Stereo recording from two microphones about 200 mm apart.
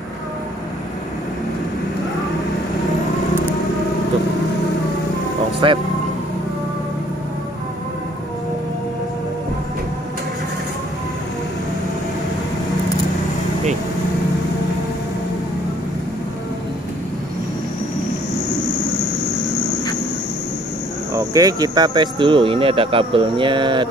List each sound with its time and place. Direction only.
5.6 s speech: 25° right (ahead or behind)
21.1 s speech: 15° right (ahead or behind)